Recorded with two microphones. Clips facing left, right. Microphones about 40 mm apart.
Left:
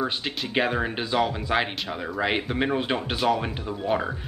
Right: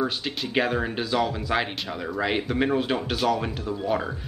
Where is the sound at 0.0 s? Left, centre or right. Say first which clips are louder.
Right 1 dB; centre.